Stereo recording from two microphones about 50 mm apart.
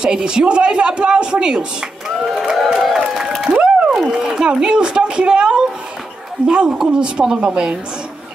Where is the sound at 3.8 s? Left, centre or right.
Centre.